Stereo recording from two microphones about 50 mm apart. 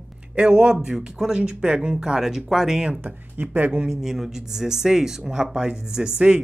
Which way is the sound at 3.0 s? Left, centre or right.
Right.